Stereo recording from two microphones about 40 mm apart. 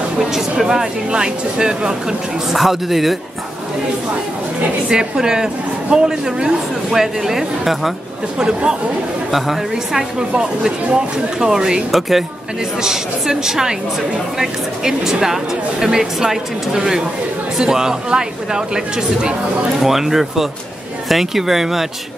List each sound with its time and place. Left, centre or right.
0.2 s speech: centre
2.5 s a woman's voice: centre
4.8 s speech: centre
9.3 s a woman's voice: centre
11.9 s a woman's voice: centre
19.8 s speech: centre